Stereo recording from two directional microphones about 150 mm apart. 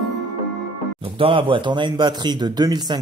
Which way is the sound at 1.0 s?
35° right (ahead or behind).